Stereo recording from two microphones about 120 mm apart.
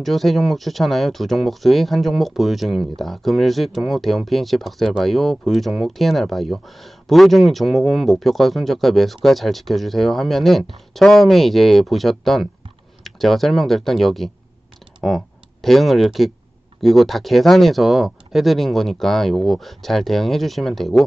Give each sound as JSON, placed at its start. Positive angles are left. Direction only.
{"t": 0.0, "sound": "speech", "side_deg": 0}